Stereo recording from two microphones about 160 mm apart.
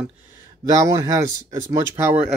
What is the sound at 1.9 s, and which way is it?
Speech, 10° right (ahead or behind).